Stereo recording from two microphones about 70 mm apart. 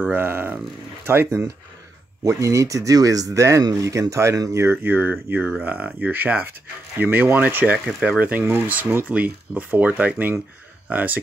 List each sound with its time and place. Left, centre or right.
0.0 s speech: right
2.2 s speech: right
4.6 s speech: right
7.7 s speech: centre
8.2 s speech: right